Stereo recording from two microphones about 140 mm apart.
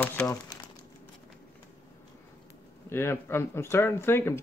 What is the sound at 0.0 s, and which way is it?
Speech, 10° left (ahead or behind).